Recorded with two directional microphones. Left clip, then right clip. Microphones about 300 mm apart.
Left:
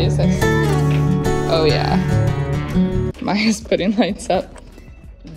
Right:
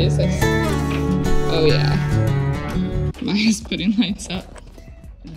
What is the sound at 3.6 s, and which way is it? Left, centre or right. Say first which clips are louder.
Speech: left 5 dB; centre.